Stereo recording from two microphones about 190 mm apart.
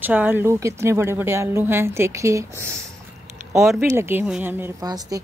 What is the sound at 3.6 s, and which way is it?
Speech, centre (ahead or behind).